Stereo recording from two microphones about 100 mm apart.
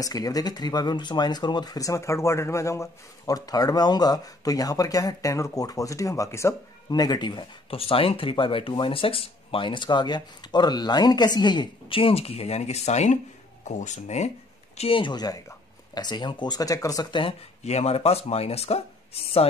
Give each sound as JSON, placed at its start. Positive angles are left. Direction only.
{"t": 0.0, "sound": "speech", "side_deg": 35}
{"t": 6.9, "sound": "speech", "side_deg": 45}
{"t": 7.7, "sound": "speech", "side_deg": 70}
{"t": 14.8, "sound": "speech", "side_deg": 60}